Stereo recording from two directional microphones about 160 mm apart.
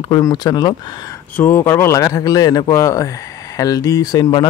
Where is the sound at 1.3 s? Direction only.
15° left (ahead or behind).